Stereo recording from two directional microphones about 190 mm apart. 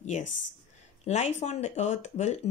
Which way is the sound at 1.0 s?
35° left (ahead or behind).